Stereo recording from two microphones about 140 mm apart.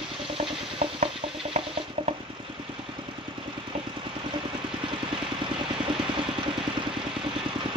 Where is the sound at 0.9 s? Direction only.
45° right (ahead or behind).